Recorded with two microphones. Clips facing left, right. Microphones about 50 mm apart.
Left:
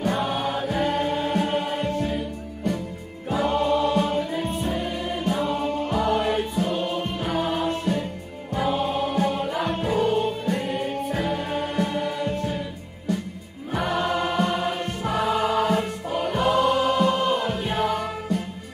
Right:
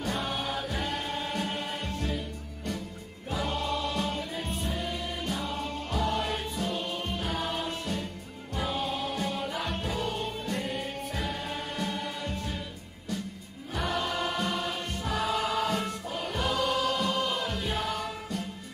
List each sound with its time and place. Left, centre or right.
0.0 s choir: left
3.3 s music: left
13.8 s choir: left
14.1 s music: centre
14.4 s music: left